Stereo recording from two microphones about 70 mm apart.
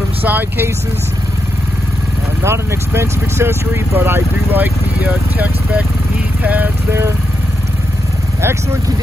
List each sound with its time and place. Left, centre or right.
0.2 s speech: right
2.4 s speech: right
6.9 s speech: right